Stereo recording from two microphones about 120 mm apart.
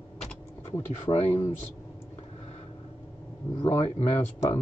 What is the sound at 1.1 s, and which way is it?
Speech, 30° left (ahead or behind).